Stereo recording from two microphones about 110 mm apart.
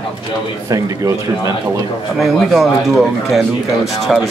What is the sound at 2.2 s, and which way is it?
Speech, centre (ahead or behind).